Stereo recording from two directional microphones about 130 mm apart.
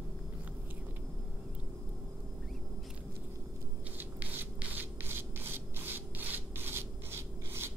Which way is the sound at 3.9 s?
15° right (ahead or behind).